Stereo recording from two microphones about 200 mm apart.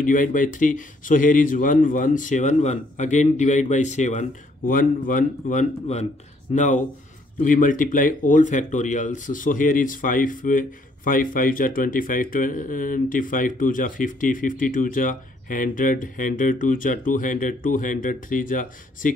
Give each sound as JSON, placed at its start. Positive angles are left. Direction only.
{"t": 0.0, "sound": "a man's voice", "side_deg": 40}